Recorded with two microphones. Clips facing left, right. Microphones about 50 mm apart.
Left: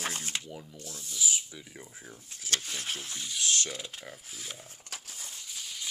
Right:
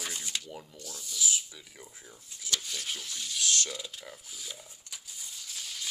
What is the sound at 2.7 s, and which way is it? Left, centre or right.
Speech, left.